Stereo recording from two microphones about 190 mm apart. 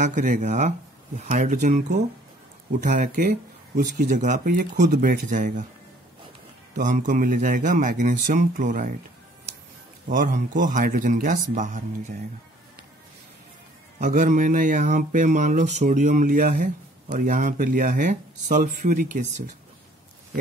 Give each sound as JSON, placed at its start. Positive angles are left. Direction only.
{"t": 0.0, "sound": "speech", "side_deg": -40}
{"t": 6.8, "sound": "speech", "side_deg": -40}
{"t": 10.0, "sound": "speech", "side_deg": -45}
{"t": 13.9, "sound": "speech", "side_deg": -40}